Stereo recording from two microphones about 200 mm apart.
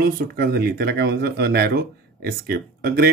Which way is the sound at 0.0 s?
50° right (ahead or behind).